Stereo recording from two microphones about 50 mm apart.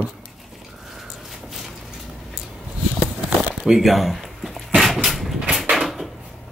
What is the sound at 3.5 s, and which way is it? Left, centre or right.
Crumpling, centre.